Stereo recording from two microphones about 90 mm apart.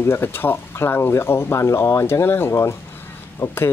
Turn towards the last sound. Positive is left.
turn(degrees=25)  # may be behind; listen again after turning